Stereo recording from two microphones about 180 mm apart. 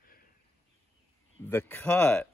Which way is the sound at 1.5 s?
10° left (ahead or behind).